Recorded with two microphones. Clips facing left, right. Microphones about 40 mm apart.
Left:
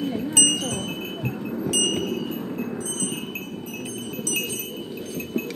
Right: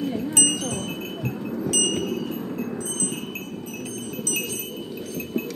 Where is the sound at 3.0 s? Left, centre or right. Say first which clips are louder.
Even; centre.